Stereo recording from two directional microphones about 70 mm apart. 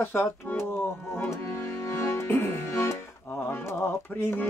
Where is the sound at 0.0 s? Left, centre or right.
Left.